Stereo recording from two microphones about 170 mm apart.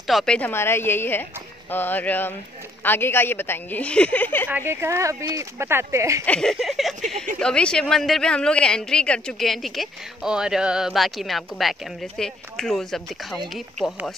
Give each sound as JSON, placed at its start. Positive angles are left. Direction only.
{"t": 0.0, "sound": "a woman's voice", "side_deg": 0}
{"t": 4.5, "sound": "speech", "side_deg": -15}
{"t": 6.2, "sound": "a woman's voice", "side_deg": 5}